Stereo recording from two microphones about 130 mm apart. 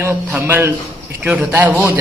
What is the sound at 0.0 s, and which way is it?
A man's voice, 15° right (ahead or behind).